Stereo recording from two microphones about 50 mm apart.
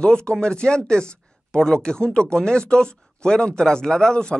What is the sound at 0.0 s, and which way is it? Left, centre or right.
Speech, centre.